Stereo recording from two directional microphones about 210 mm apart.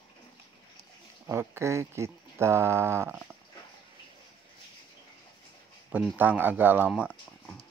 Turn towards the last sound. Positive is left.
turn(degrees=-5)  # may be behind; listen again after turning